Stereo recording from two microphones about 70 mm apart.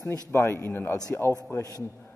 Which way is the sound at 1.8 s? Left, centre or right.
Left.